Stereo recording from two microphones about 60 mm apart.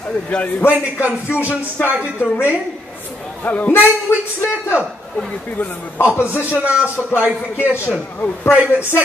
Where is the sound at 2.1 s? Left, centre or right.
Left.